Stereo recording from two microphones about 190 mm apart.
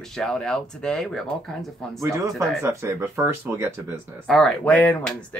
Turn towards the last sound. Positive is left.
turn(degrees=10)  # may be behind; listen again after turning